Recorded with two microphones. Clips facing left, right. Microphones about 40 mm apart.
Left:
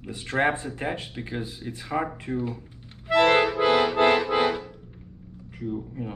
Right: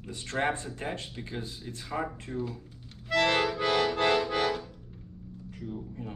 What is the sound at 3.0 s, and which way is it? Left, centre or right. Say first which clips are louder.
Accordion: left 6 dB; left.